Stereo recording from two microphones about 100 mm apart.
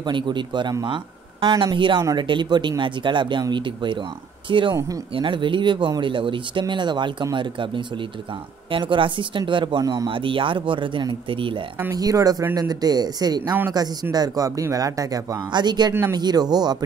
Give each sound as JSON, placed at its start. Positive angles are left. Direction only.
{"t": 0.0, "sound": "speech", "side_deg": -50}
{"t": 1.5, "sound": "speech", "side_deg": -45}
{"t": 11.9, "sound": "speech", "side_deg": -35}
{"t": 15.9, "sound": "speech", "side_deg": -30}
{"t": 16.2, "sound": "speech", "side_deg": -45}